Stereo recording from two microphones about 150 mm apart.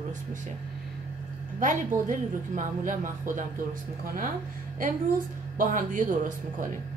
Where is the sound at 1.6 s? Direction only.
60° right (ahead or behind).